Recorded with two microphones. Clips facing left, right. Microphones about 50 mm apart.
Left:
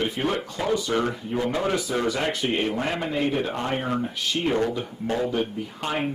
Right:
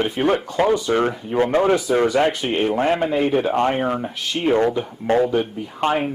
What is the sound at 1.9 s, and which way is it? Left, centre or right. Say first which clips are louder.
Speech: right 8 dB; right.